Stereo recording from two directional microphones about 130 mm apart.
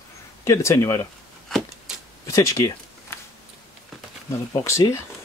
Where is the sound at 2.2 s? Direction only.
25° left (ahead or behind).